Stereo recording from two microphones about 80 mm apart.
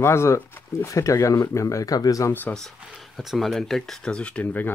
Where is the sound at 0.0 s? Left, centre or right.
Left.